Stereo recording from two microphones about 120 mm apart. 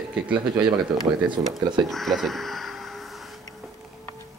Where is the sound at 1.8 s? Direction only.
Centre (ahead or behind).